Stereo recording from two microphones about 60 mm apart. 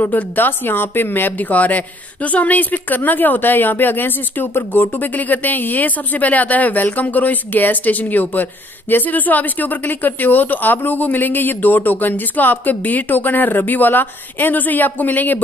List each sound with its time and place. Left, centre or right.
0.0 s a woman's voice: left